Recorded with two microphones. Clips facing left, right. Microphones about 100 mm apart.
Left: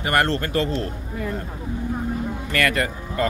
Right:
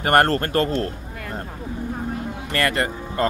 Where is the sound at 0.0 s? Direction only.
45° right (ahead or behind).